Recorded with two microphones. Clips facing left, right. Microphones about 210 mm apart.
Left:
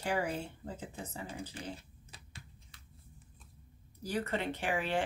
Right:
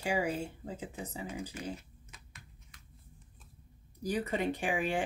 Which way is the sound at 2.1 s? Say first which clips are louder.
Left 3 dB; 30° left (ahead or behind).